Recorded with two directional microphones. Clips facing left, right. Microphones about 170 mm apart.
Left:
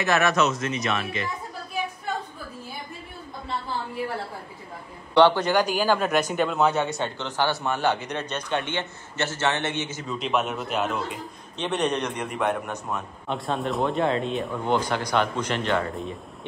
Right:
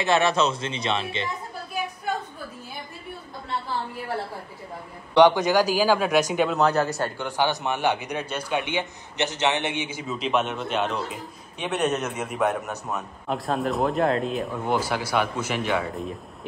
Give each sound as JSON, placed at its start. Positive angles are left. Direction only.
{"t": 0.0, "sound": "speech", "side_deg": -30}
{"t": 5.1, "sound": "a man's voice", "side_deg": -15}
{"t": 10.1, "sound": "a man's voice", "side_deg": 0}